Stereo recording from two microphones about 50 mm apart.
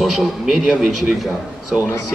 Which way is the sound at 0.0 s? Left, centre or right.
Centre.